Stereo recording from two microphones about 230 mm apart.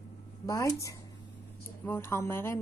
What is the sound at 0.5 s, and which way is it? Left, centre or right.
Speech, centre.